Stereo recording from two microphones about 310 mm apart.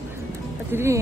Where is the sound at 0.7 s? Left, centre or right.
Centre.